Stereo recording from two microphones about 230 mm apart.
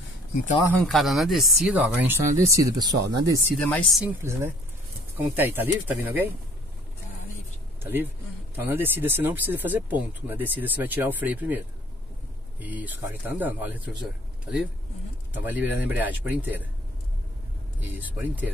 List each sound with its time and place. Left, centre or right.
0.8 s speech: centre
3.5 s speech: centre
4.2 s speech: centre
7.8 s speech: centre
15.4 s speech: centre
17.9 s speech: centre